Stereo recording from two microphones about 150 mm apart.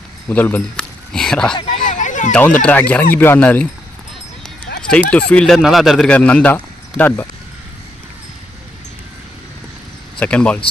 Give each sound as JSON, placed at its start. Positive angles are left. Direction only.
{"t": 0.3, "sound": "speech", "side_deg": 10}
{"t": 1.9, "sound": "a sound", "side_deg": 55}
{"t": 2.6, "sound": "speech", "side_deg": 10}
{"t": 4.8, "sound": "speech", "side_deg": 5}
{"t": 10.1, "sound": "speech", "side_deg": 10}